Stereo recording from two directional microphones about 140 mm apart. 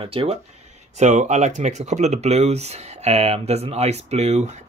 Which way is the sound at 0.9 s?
55° right (ahead or behind).